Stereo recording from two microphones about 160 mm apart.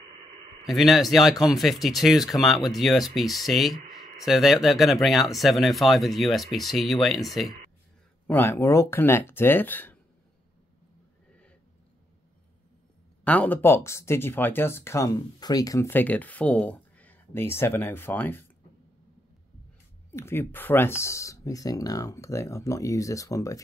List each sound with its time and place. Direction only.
0.7 s speech: centre (ahead or behind)
8.3 s speech: 15° left (ahead or behind)
13.2 s speech: 10° left (ahead or behind)
20.1 s speech: 15° left (ahead or behind)